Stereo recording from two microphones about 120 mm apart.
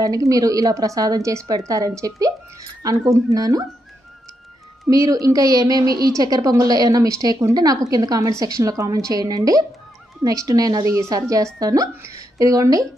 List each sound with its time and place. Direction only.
0.0 s a woman's voice: 30° right (ahead or behind)
4.8 s a woman's voice: 30° right (ahead or behind)